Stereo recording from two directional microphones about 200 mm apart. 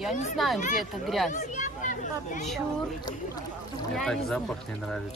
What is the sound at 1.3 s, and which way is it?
Speech, 40° left (ahead or behind).